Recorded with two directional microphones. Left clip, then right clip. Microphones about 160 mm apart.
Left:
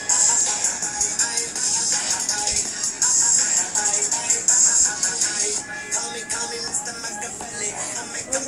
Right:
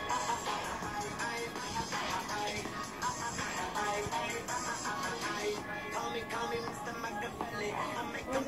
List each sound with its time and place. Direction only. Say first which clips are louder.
0.1 s music: left 13 dB; 25° right (ahead or behind)